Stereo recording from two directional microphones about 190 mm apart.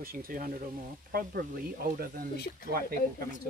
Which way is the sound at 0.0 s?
50° right (ahead or behind).